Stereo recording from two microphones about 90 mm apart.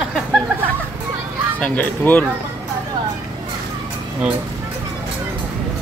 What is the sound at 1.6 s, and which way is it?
Speech, 15° left (ahead or behind).